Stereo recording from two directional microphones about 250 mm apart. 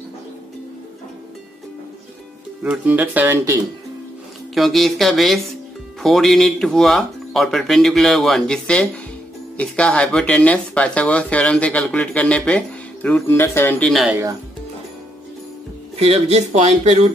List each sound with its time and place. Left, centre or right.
2.6 s speech: centre
4.6 s speech: centre
16.0 s speech: right